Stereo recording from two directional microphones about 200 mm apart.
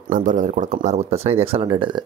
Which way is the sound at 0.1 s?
40° right (ahead or behind).